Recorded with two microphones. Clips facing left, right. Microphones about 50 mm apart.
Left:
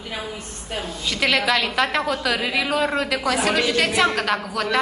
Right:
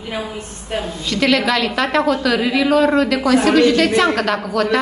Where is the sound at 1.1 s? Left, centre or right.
Centre.